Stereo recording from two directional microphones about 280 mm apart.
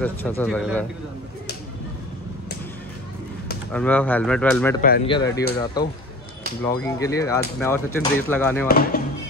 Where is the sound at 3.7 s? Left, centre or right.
Centre.